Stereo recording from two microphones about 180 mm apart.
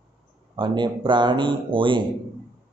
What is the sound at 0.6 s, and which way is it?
Speech, 25° right (ahead or behind).